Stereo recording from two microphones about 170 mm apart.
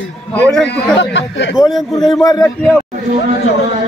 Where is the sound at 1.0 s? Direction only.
90° left.